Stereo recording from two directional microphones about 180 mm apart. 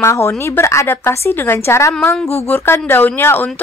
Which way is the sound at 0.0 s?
15° left (ahead or behind).